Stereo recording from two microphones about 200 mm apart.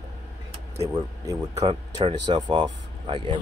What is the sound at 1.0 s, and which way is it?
Speech, 20° right (ahead or behind).